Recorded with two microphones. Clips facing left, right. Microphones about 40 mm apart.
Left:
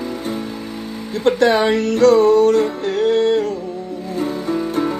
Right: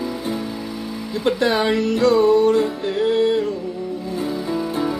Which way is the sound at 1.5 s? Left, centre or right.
Centre.